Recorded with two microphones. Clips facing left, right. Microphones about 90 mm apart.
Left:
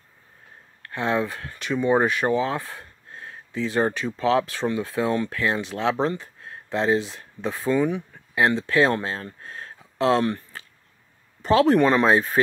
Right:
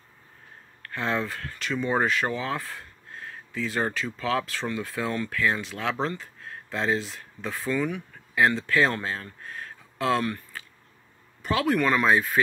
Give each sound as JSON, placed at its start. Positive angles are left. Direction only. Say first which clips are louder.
{"t": 0.8, "sound": "speech", "louder": "left 4 dB", "side_deg": 20}